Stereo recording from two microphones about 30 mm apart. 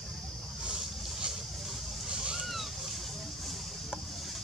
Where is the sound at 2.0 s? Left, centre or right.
Right.